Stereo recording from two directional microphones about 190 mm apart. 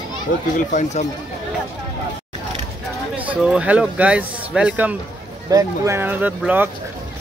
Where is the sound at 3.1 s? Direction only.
10° right (ahead or behind).